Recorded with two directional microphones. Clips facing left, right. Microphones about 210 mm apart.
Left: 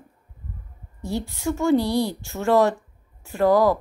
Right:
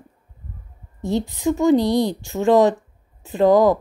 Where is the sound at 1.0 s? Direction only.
20° right (ahead or behind).